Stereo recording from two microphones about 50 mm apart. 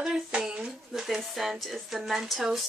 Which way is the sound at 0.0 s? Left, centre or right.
Centre.